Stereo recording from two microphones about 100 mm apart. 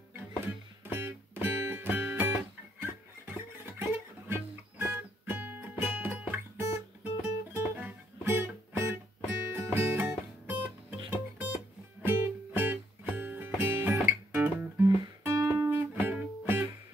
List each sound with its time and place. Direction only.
0.8 s music: 20° right (ahead or behind)